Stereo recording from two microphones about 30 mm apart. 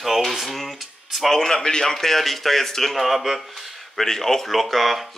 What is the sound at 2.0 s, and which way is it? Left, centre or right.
Speech, centre.